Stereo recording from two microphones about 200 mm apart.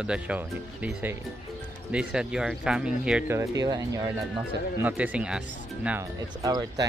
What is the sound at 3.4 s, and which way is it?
Speech, 20° right (ahead or behind).